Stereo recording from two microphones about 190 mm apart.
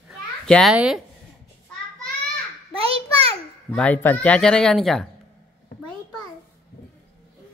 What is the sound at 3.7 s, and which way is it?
Speech, 10° left (ahead or behind).